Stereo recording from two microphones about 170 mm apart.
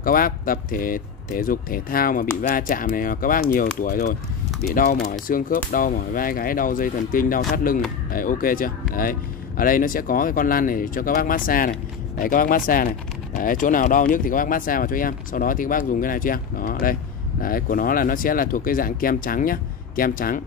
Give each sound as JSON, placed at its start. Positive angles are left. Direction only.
{"t": 0.0, "sound": "speech", "side_deg": 55}
{"t": 5.3, "sound": "speech", "side_deg": 55}